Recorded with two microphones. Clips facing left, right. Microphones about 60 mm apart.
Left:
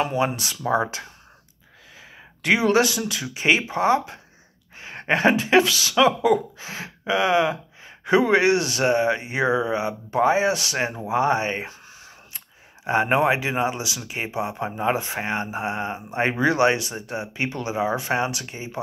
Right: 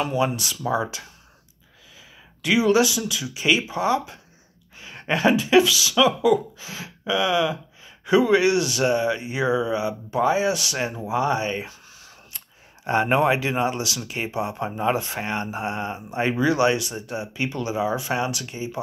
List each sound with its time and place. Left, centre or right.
0.0 s speech: left